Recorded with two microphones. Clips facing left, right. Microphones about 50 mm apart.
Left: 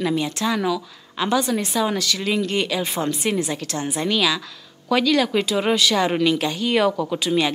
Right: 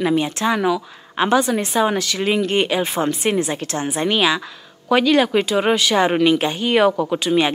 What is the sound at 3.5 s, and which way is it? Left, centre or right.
Speech, right.